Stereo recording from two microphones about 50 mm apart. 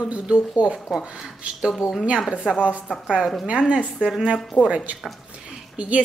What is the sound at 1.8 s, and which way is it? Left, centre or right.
Speech, left.